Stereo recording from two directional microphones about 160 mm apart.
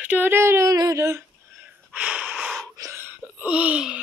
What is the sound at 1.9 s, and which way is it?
Wheeze, 10° right (ahead or behind).